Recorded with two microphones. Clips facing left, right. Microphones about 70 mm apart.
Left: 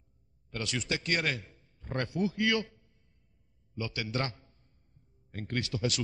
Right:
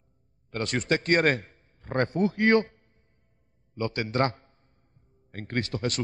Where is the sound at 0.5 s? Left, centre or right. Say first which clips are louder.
Right 8 dB; right.